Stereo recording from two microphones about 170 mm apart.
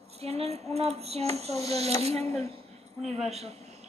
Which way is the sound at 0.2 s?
40° right (ahead or behind).